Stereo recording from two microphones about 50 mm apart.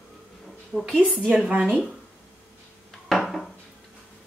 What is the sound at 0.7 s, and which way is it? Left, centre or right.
Speech, centre.